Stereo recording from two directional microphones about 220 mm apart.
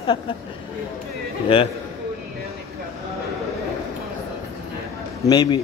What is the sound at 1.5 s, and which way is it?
Speech, 25° left (ahead or behind).